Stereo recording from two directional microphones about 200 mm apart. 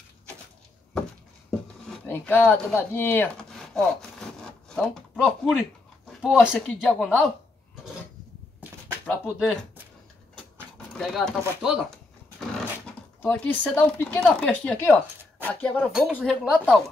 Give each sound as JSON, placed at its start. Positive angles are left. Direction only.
{"t": 1.9, "sound": "a sound", "side_deg": 10}
{"t": 5.2, "sound": "speech", "side_deg": -5}
{"t": 6.9, "sound": "speech", "side_deg": 10}
{"t": 9.0, "sound": "speech", "side_deg": 5}
{"t": 10.9, "sound": "speech", "side_deg": 0}
{"t": 13.2, "sound": "speech", "side_deg": 10}